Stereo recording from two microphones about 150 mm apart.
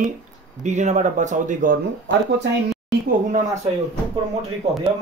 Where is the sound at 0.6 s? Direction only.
50° right (ahead or behind).